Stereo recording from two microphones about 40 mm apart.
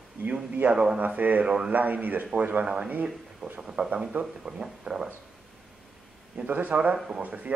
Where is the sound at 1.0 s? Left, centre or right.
Right.